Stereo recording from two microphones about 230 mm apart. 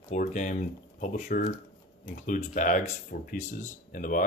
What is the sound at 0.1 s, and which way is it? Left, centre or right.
Speech, left.